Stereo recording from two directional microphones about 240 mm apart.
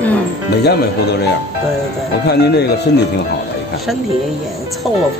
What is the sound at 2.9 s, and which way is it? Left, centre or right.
Speech, left.